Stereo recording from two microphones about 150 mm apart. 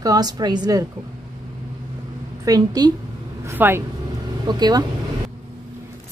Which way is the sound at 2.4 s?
25° right (ahead or behind).